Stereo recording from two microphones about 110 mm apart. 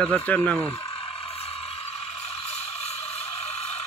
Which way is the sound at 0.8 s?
60° left (ahead or behind).